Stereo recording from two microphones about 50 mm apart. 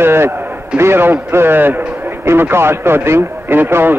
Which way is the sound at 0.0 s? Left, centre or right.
Right.